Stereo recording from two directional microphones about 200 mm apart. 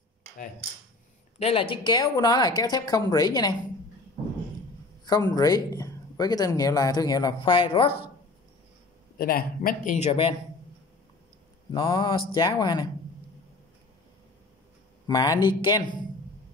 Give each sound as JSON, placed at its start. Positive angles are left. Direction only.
{"t": 1.4, "sound": "speech", "side_deg": 25}
{"t": 5.0, "sound": "speech", "side_deg": 20}
{"t": 9.2, "sound": "speech", "side_deg": 45}
{"t": 11.7, "sound": "speech", "side_deg": 25}
{"t": 15.0, "sound": "speech", "side_deg": 20}